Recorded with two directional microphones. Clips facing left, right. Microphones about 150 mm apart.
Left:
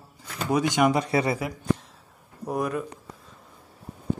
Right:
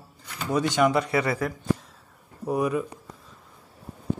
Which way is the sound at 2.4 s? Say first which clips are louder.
Right 3 dB; 5° right (ahead or behind).